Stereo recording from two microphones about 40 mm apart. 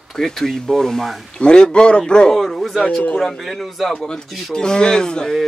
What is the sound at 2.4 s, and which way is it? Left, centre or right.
Speech, centre.